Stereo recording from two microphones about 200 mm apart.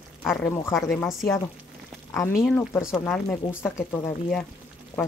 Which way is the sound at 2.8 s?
5° right (ahead or behind).